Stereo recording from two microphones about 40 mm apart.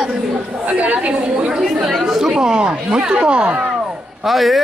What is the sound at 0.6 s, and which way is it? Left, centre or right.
A woman's voice, right.